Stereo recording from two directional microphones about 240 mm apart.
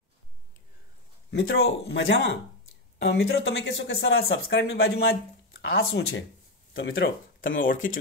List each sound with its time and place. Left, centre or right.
1.3 s speech: left
7.4 s speech: left